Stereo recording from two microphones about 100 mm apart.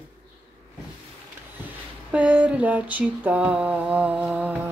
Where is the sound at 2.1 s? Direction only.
15° right (ahead or behind).